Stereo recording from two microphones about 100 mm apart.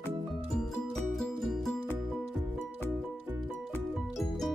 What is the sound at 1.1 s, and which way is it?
Music, centre (ahead or behind).